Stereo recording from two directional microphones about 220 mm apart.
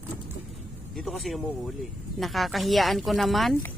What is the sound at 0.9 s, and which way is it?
Speech, centre (ahead or behind).